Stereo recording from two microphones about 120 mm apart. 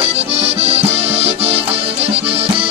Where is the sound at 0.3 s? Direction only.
60° right (ahead or behind).